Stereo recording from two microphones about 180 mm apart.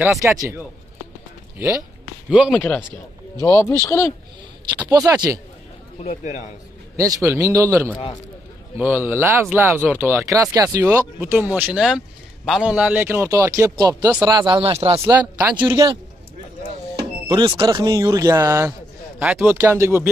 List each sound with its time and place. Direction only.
0.2 s speech: 15° right (ahead or behind)
2.2 s speech: 5° right (ahead or behind)
2.5 s speech: 10° left (ahead or behind)
4.8 s speech: 20° right (ahead or behind)
6.0 s a man's voice: 40° left (ahead or behind)
7.2 s speech: 15° right (ahead or behind); by 15.0 s 35° right (ahead or behind)
15.0 s speech: 10° right (ahead or behind)
15.6 s speech: 20° right (ahead or behind)
17.3 s a man's voice: 20° right (ahead or behind)
19.2 s speech: centre (ahead or behind)
19.5 s speech: 15° right (ahead or behind)